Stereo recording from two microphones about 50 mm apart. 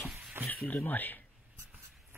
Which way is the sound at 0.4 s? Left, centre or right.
Right.